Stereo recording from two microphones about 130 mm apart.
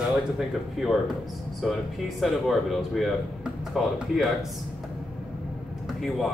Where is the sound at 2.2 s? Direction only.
Centre (ahead or behind).